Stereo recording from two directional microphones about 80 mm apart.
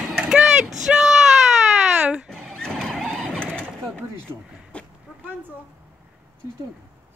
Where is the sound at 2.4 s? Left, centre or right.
Centre.